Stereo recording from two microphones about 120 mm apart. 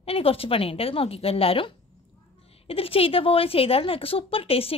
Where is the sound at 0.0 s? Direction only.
50° left (ahead or behind).